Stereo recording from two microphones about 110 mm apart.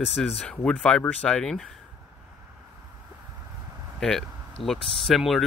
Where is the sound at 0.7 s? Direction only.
5° left (ahead or behind).